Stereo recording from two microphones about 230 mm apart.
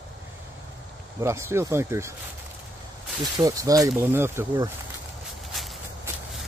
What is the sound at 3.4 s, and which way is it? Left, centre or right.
Speech, centre.